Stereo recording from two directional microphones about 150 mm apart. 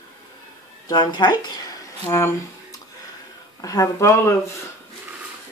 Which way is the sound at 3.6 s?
20° left (ahead or behind).